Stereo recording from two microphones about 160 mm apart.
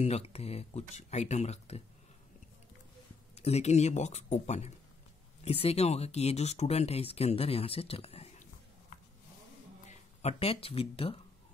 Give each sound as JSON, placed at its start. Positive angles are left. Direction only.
{"t": 0.0, "sound": "speech", "side_deg": 40}
{"t": 3.3, "sound": "speech", "side_deg": 40}
{"t": 9.8, "sound": "speech", "side_deg": 40}